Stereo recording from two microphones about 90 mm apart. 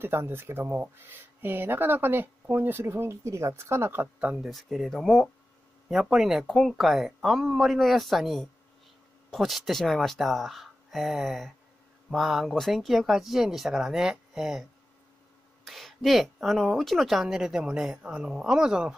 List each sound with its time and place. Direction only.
0.0 s speech: 25° right (ahead or behind)
4.5 s speech: centre (ahead or behind)